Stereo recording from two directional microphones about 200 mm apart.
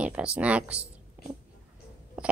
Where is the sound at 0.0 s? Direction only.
5° right (ahead or behind).